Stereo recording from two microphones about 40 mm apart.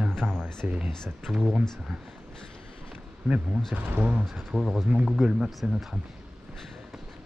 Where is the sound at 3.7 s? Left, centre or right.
Right.